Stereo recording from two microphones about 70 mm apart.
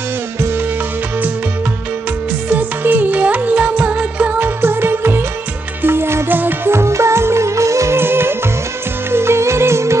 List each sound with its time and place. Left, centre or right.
2.5 s music: right
4.6 s music: right
8.0 s music: right